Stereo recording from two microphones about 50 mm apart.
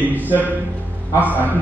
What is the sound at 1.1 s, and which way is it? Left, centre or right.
Speech, right.